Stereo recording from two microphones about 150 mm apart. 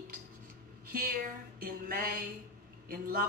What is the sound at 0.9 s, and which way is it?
A woman's voice, 70° right (ahead or behind).